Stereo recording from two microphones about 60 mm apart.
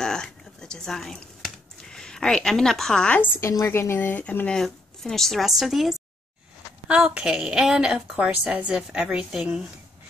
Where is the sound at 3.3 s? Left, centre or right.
Left.